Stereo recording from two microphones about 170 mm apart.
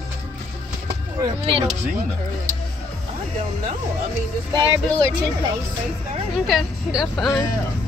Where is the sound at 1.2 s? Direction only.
30° right (ahead or behind).